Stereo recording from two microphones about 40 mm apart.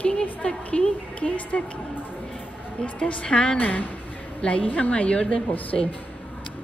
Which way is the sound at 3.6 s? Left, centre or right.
Left.